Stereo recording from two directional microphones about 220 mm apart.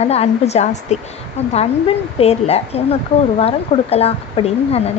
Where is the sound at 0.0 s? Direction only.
30° left (ahead or behind).